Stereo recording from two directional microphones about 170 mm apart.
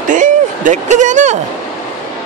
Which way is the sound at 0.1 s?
50° right (ahead or behind).